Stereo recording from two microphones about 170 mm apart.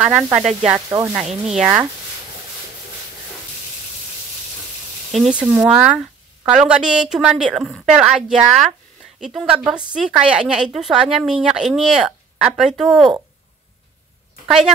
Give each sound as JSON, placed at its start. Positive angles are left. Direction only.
{"t": 0.0, "sound": "a woman's voice", "side_deg": -5}
{"t": 0.4, "sound": "sizzle", "side_deg": -45}
{"t": 0.7, "sound": "speech", "side_deg": -20}
{"t": 1.1, "sound": "a woman's voice", "side_deg": -5}
{"t": 5.1, "sound": "a woman's voice", "side_deg": -5}